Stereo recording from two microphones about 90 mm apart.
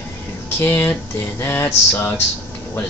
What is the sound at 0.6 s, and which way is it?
A man's voice, 25° left (ahead or behind).